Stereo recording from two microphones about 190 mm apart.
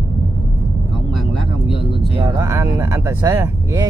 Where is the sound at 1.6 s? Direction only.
30° left (ahead or behind).